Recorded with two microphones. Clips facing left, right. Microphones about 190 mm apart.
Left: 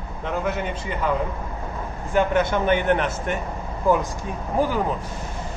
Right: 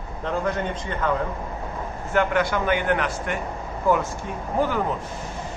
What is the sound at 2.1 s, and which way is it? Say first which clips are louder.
A man's voice: left 2 dB; 20° left (ahead or behind).